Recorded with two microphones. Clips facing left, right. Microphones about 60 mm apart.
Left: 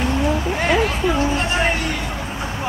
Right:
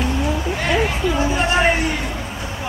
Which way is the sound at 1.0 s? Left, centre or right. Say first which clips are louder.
Left 1 dB; left.